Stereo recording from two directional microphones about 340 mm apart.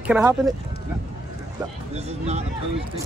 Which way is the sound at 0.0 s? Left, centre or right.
Centre.